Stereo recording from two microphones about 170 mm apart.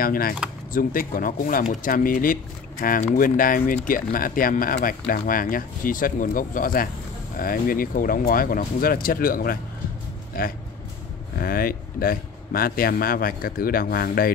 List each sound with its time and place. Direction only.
0.0 s speech: 60° left (ahead or behind)